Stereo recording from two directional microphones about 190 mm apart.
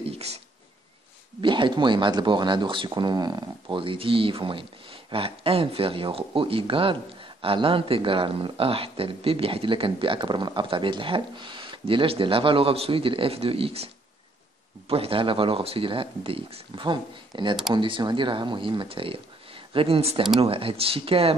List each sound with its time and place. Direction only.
1.4 s speech: 25° right (ahead or behind)
14.9 s speech: 30° right (ahead or behind)